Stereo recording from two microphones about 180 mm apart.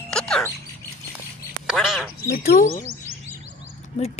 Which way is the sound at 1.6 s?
Centre (ahead or behind).